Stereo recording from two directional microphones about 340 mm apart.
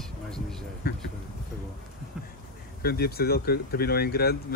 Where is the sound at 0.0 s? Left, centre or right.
Centre.